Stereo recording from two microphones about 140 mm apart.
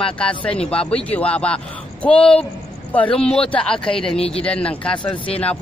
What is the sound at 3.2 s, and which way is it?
Speech, 5° left (ahead or behind).